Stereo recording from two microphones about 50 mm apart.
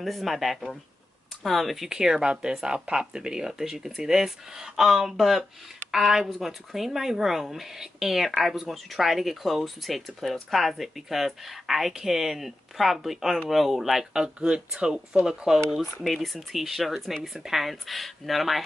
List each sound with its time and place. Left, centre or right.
0.0 s speech: centre
14.2 s speech: right
15.8 s speech: centre